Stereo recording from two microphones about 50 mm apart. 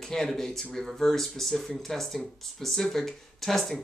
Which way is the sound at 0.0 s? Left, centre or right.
Centre.